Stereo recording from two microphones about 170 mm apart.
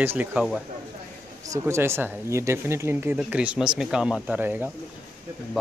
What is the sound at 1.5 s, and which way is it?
Speech, 15° right (ahead or behind).